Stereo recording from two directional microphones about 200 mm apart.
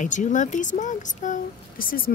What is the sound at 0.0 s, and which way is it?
Speech, 40° left (ahead or behind).